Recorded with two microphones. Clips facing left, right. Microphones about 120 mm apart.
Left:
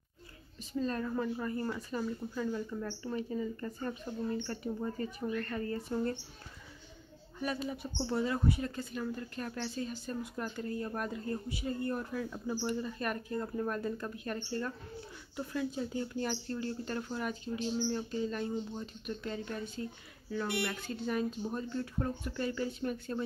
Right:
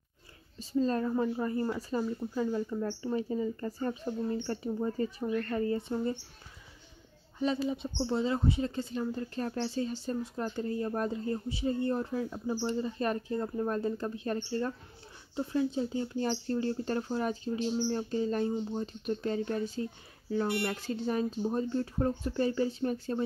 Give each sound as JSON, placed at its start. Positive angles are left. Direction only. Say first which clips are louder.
{"t": 0.6, "sound": "speech", "louder": "right 6 dB", "side_deg": -30}
{"t": 7.3, "sound": "speech", "louder": "right 6 dB", "side_deg": -25}